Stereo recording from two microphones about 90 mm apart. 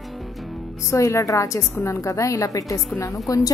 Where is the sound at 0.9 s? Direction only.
35° left (ahead or behind).